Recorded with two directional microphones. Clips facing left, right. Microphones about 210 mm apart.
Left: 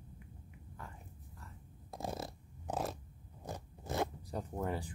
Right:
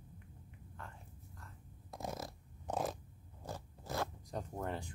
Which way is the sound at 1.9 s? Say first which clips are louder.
Left 2 dB; 30° left (ahead or behind).